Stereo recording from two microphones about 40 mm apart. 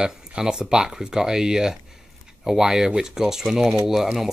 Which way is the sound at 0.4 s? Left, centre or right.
Centre.